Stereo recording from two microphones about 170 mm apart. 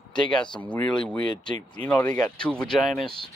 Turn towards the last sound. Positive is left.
turn(degrees=0)  # may be behind; listen again after turning